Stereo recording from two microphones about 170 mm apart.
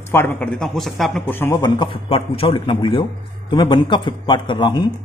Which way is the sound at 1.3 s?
15° left (ahead or behind).